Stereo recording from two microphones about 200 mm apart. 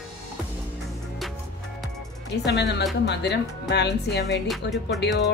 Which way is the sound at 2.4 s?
55° left (ahead or behind).